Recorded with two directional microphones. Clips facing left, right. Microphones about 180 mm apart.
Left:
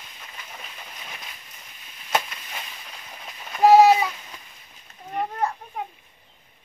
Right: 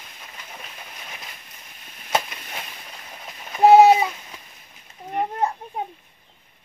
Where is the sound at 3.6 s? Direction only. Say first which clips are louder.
Right 2 dB; 20° right (ahead or behind).